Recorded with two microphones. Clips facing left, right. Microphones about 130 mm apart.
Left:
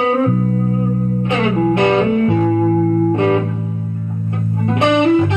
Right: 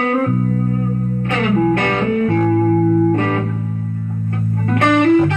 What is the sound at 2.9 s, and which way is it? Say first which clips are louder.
Music: right 1 dB; 30° left (ahead or behind).